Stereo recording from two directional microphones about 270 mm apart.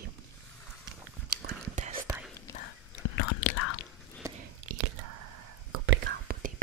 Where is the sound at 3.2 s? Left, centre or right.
Left.